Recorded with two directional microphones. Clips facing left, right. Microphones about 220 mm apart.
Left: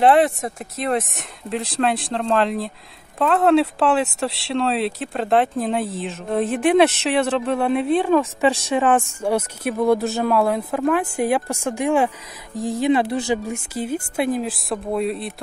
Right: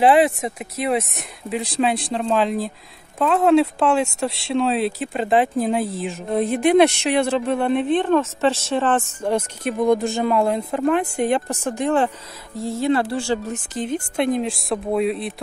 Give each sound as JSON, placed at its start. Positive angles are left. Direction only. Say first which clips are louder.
{"t": 0.0, "sound": "a woman's voice", "louder": "even", "side_deg": 0}